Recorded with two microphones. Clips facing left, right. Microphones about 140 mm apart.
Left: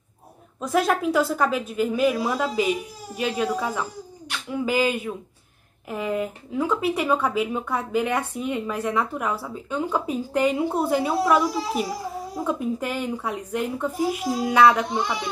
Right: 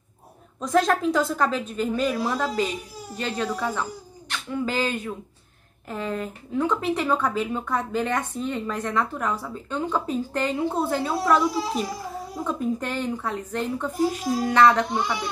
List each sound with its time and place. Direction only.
0.6 s speech: 10° left (ahead or behind)